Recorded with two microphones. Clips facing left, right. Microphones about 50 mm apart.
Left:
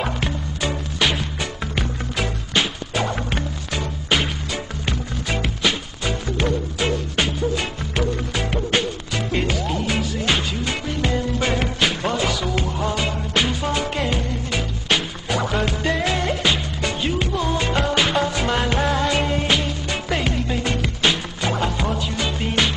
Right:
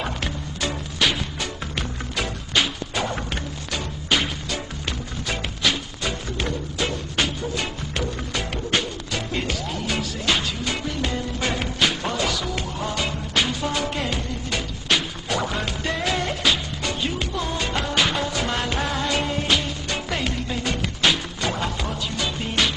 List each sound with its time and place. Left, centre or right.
0.0 s music: centre
2.5 s music: centre
17.9 s music: centre
21.0 s music: centre